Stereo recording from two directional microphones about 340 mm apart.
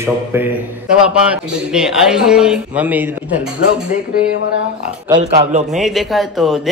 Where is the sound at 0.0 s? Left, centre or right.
Centre.